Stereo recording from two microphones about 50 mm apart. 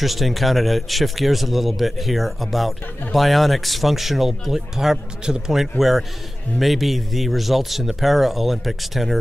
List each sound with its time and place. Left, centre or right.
0.0 s a man's voice: centre